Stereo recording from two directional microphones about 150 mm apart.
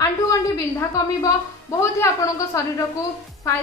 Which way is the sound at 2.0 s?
20° left (ahead or behind).